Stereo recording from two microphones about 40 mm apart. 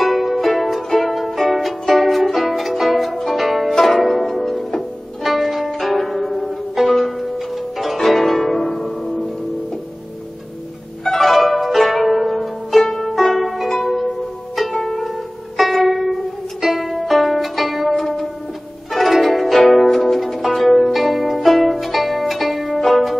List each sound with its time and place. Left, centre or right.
0.0 s music: centre
3.3 s zither: centre
4.0 s pizzicato: centre
4.6 s music: centre
5.2 s zither: centre
6.7 s pizzicato: centre
7.8 s zither: centre
8.8 s music: left
11.1 s pizzicato: centre
14.8 s music: centre
18.9 s pizzicato: centre